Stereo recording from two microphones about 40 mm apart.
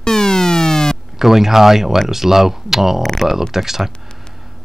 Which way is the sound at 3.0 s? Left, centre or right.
Centre.